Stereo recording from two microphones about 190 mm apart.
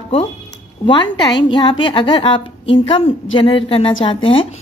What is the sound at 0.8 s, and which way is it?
A woman's voice, 25° left (ahead or behind).